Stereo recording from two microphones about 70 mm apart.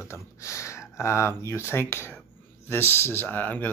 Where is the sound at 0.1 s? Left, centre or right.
Left.